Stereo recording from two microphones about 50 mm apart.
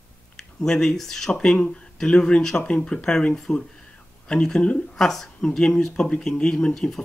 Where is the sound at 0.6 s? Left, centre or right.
Centre.